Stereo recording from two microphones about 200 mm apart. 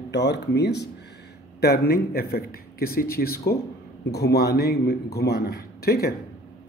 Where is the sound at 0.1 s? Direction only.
60° left (ahead or behind).